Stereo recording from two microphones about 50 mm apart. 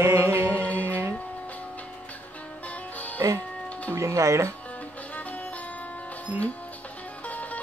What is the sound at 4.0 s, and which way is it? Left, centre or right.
Speech, right.